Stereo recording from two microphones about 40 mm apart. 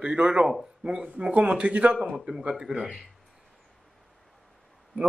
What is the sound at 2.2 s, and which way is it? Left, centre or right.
Speech, centre.